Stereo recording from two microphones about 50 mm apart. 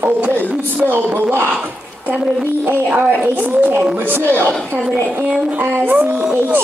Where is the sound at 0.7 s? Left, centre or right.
Right.